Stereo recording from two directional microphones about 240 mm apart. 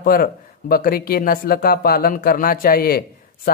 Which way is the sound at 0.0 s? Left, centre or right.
Left.